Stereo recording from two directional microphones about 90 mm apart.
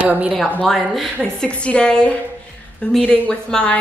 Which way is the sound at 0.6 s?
5° left (ahead or behind).